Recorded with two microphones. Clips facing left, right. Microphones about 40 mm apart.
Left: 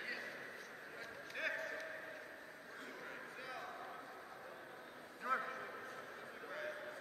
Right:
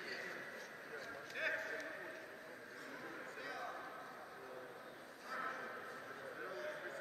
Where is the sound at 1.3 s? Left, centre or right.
Centre.